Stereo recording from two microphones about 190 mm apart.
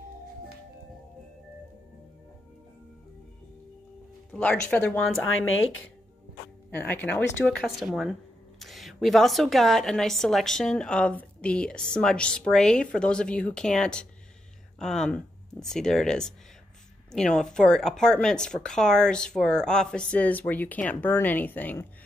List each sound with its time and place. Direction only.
4.3 s speech: 5° left (ahead or behind)
5.4 s speech: 90° left
6.7 s speech: 10° left (ahead or behind)